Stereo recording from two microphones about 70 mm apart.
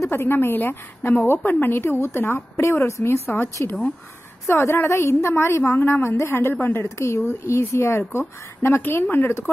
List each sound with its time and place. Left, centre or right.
0.0 s a woman's voice: left
4.5 s a woman's voice: left